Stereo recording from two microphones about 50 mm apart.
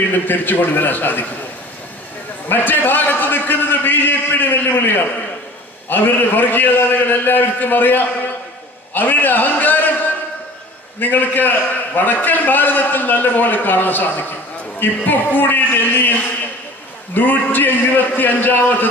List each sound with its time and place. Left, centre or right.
0.1 s a man's voice: left
2.5 s a man's voice: left
11.0 s a man's voice: left